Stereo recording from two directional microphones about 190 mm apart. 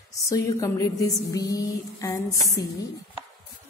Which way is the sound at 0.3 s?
15° left (ahead or behind).